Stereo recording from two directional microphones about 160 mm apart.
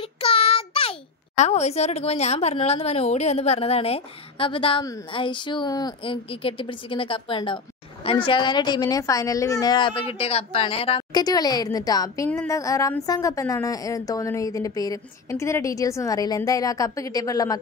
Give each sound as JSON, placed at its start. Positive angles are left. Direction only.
{"t": 0.0, "sound": "child singing", "side_deg": 35}
{"t": 1.4, "sound": "speech", "side_deg": 45}
{"t": 11.1, "sound": "a woman's voice", "side_deg": 25}